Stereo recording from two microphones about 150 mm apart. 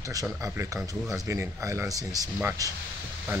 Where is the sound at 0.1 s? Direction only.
20° right (ahead or behind).